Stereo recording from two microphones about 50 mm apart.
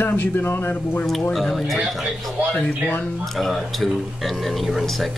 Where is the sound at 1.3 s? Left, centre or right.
Centre.